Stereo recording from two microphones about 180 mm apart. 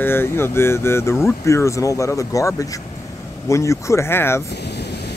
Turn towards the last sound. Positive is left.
turn(degrees=65)  # may be behind; listen again after turning